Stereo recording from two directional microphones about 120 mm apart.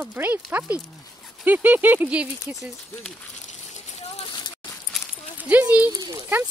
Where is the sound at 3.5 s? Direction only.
70° left (ahead or behind).